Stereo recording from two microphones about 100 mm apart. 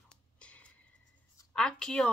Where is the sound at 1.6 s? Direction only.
10° left (ahead or behind).